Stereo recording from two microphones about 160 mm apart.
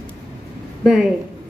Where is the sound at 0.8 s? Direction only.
5° right (ahead or behind).